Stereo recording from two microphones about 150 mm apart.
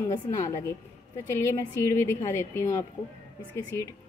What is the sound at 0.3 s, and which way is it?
A woman's voice, 20° left (ahead or behind).